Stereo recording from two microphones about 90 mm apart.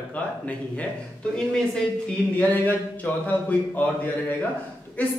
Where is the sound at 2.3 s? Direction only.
20° left (ahead or behind).